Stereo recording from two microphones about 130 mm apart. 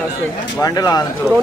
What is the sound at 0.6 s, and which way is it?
Speech, 30° left (ahead or behind).